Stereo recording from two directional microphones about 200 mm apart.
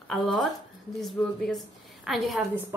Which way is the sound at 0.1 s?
Centre (ahead or behind).